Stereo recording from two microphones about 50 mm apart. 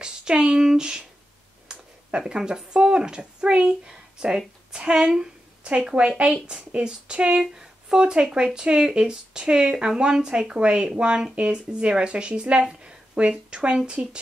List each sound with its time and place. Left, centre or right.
0.0 s speech: centre